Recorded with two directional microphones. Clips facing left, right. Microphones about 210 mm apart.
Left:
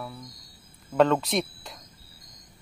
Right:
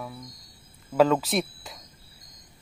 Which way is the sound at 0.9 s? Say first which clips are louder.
Right 1 dB; 5° right (ahead or behind).